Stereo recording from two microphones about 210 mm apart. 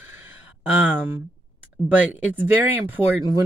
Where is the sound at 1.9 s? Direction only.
5° right (ahead or behind).